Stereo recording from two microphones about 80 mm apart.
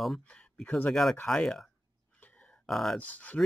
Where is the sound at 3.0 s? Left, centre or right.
Centre.